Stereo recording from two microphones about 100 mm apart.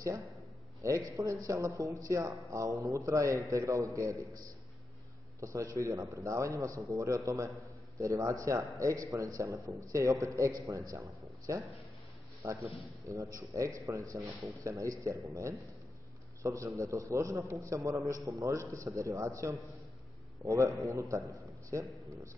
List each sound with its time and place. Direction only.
0.7 s a man's voice: 30° right (ahead or behind)
12.4 s a man's voice: 30° right (ahead or behind)
16.4 s a man's voice: 30° right (ahead or behind)